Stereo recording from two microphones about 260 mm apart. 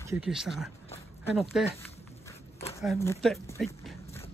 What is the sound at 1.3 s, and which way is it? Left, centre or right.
Speech, centre.